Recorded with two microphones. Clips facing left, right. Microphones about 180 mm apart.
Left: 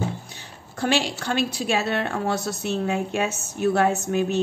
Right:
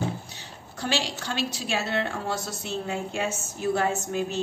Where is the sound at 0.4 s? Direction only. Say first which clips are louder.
Left 6 dB; 55° left (ahead or behind).